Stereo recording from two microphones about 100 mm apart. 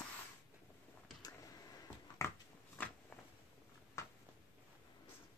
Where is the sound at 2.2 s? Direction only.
30° left (ahead or behind).